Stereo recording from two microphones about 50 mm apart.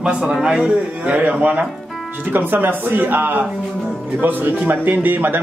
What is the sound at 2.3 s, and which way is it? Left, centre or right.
Speech, right.